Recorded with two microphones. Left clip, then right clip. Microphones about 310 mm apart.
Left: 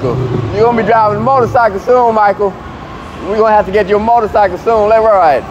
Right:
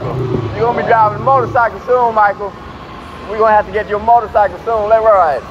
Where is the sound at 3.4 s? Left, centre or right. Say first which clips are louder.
Left 2 dB; left.